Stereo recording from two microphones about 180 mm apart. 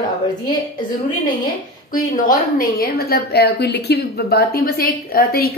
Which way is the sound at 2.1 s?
50° left (ahead or behind).